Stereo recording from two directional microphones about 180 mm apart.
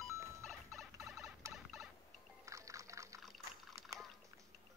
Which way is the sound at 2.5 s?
15° right (ahead or behind).